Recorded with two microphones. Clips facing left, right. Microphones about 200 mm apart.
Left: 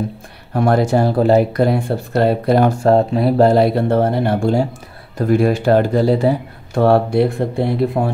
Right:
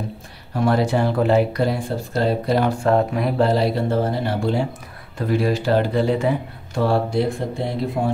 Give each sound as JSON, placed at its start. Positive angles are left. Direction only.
{"t": 0.6, "sound": "speech", "side_deg": 50}
{"t": 1.6, "sound": "speech", "side_deg": 60}
{"t": 2.8, "sound": "speech", "side_deg": 35}
{"t": 6.7, "sound": "speech", "side_deg": 60}